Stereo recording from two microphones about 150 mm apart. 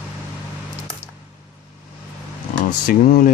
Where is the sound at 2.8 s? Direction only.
65° left (ahead or behind).